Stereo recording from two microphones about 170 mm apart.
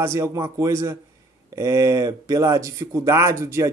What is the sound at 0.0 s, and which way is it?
Speech, 15° right (ahead or behind).